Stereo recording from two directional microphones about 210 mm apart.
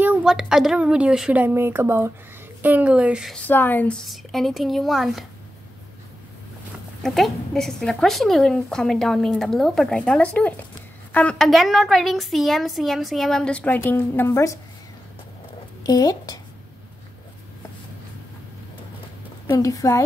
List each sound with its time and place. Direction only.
0.0 s a woman's voice: 5° right (ahead or behind)
3.4 s a woman's voice: 10° left (ahead or behind)
7.0 s a woman's voice: centre (ahead or behind)
15.8 s speech: 15° left (ahead or behind)
19.4 s speech: 15° left (ahead or behind)